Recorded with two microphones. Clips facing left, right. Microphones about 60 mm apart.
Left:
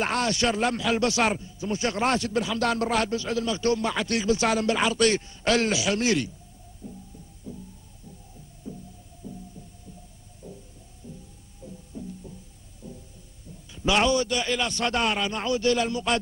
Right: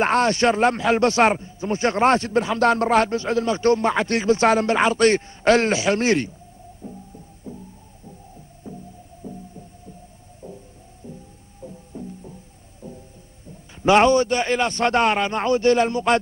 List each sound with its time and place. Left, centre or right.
0.0 s speech: right
6.8 s heart murmur: right
8.6 s music: right
9.2 s throbbing: right
10.4 s heart murmur: right
11.0 s music: right
13.8 s speech: right